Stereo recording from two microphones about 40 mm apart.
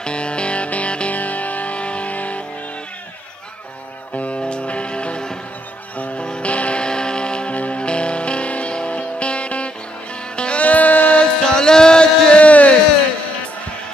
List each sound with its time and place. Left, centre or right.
0.0 s music: left
4.1 s music: left
5.9 s music: left
10.6 s music: left
11.1 s music: centre; by 12.7 s left